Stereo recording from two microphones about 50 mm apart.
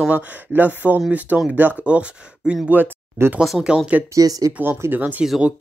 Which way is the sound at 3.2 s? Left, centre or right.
Right.